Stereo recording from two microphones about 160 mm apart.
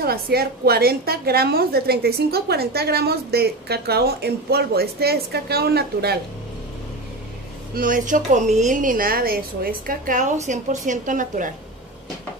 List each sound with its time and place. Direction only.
0.0 s a woman's voice: 75° right (ahead or behind)
7.7 s a woman's voice: 60° right (ahead or behind)